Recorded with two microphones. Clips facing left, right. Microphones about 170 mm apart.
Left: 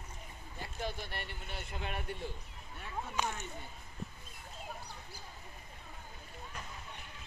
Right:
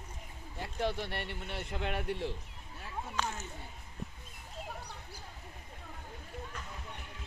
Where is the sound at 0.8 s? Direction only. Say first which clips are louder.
Right 6 dB; 75° right (ahead or behind); by 2.3 s 90° right.